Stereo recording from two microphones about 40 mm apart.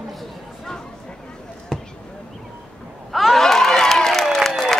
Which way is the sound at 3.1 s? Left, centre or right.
Centre.